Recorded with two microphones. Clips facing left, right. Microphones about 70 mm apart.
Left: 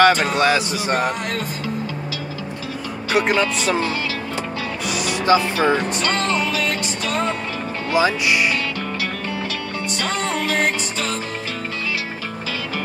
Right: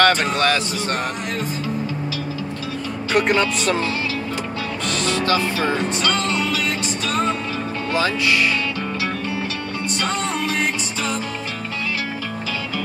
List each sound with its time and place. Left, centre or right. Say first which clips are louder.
0.0 s a sound: left 2 dB; centre
0.4 s speech: left 2 dB; centre
3.1 s speech: even; centre
4.8 s speech: left 2 dB; centre
5.6 s speech: left 2 dB; left
7.9 s speech: left 2 dB; centre
10.0 s music: left 1 dB; left